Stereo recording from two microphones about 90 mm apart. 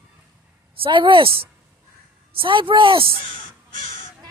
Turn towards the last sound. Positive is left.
turn(degrees=-80)